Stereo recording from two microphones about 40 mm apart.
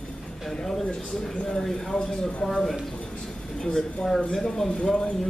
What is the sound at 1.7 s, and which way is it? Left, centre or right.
A man's voice, centre.